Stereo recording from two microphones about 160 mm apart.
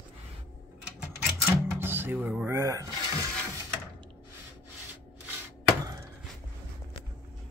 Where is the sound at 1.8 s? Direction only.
15° right (ahead or behind).